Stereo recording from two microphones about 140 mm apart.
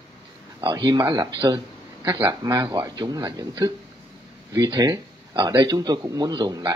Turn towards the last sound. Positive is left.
turn(degrees=-30)  # may be behind; listen again after turning